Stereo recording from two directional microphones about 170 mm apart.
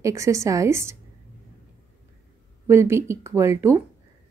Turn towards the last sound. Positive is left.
turn(degrees=-15)  # may be behind; listen again after turning